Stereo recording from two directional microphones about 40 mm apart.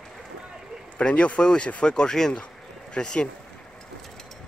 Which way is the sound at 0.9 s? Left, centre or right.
Left.